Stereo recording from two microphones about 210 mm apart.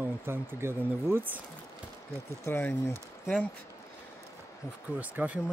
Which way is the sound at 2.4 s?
10° left (ahead or behind).